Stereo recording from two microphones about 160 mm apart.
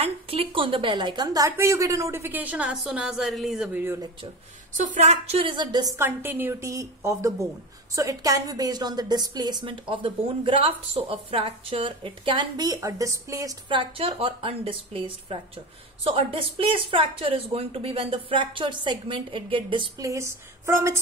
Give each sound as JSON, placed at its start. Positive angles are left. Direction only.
{"t": 0.0, "sound": "a woman's voice", "side_deg": -35}
{"t": 3.8, "sound": "a woman's voice", "side_deg": -15}
{"t": 4.7, "sound": "a woman's voice", "side_deg": -50}
{"t": 5.9, "sound": "a woman's voice", "side_deg": -10}
{"t": 20.0, "sound": "a woman's voice", "side_deg": -20}